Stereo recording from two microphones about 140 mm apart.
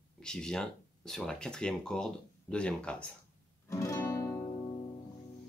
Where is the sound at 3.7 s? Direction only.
20° left (ahead or behind).